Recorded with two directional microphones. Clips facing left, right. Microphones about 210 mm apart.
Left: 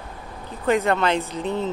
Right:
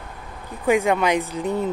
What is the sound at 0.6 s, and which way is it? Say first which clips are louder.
Speech: right 1 dB; 10° right (ahead or behind).